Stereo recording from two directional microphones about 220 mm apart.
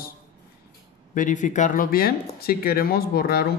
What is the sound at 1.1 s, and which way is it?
Speech, 35° left (ahead or behind).